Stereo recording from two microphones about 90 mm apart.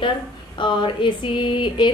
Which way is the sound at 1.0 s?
60° left (ahead or behind).